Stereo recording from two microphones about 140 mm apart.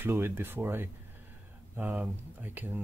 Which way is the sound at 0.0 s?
15° right (ahead or behind).